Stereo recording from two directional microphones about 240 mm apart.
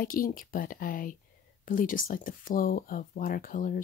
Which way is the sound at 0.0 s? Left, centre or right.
Left.